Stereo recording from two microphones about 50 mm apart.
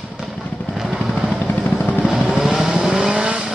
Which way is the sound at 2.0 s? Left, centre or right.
Centre.